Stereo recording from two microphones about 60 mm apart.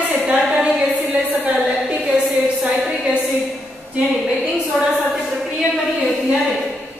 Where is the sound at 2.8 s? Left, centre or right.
Centre.